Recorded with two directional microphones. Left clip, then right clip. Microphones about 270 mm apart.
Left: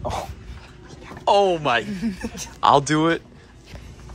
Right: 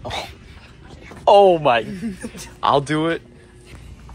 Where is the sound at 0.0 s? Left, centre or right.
Centre.